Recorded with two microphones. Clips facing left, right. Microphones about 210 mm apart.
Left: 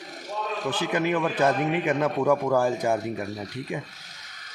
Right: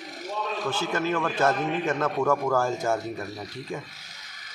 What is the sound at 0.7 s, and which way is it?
A man's voice, 15° left (ahead or behind).